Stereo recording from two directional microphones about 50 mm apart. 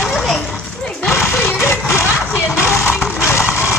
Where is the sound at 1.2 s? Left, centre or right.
Left.